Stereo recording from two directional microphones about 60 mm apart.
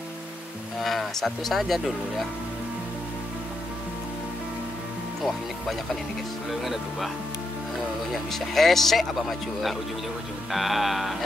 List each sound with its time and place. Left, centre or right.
0.7 s speech: centre
6.5 s speech: centre
8.1 s speech: centre